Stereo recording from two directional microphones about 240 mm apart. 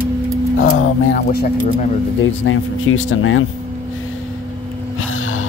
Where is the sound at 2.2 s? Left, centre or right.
Left.